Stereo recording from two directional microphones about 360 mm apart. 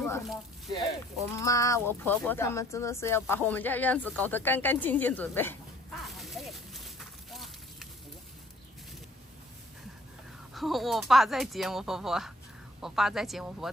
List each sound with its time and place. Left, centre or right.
0.0 s speech: centre
6.0 s a sound: centre
10.5 s speech: centre